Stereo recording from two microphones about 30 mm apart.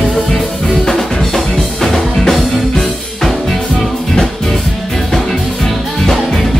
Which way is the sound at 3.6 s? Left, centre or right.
Centre.